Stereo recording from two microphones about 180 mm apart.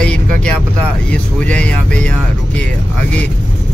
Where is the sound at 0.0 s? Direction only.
5° left (ahead or behind).